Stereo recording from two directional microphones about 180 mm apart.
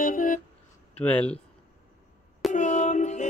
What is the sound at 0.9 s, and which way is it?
Speech, 5° left (ahead or behind).